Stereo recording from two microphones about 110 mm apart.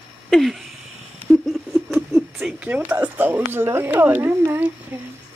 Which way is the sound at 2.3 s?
10° right (ahead or behind).